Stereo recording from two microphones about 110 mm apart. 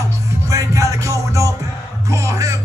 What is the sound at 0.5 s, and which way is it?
Music, 30° right (ahead or behind).